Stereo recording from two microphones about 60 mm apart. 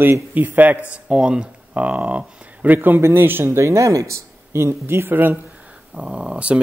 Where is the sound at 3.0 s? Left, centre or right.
Right.